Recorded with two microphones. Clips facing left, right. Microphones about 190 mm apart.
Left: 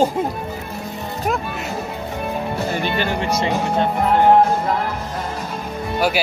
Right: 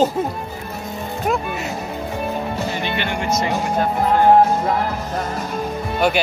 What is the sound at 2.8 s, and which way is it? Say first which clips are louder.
Speech: left 2 dB; 40° left (ahead or behind).